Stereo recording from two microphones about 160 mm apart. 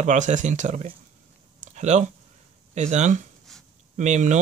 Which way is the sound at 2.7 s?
45° right (ahead or behind).